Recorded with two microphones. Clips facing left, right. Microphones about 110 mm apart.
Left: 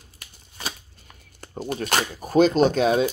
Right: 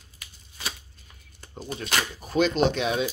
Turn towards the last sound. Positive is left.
turn(degrees=40)  # may be behind; listen again after turning